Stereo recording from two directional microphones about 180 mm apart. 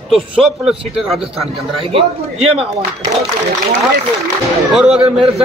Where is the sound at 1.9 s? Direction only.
35° right (ahead or behind).